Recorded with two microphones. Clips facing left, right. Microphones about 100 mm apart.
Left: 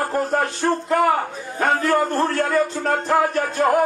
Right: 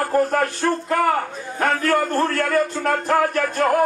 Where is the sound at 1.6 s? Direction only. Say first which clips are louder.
Left 1 dB; 25° left (ahead or behind).